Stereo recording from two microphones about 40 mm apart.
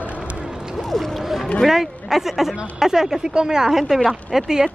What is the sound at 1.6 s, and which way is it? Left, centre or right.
Speech, centre.